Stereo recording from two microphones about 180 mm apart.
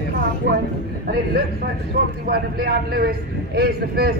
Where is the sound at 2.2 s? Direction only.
60° right (ahead or behind).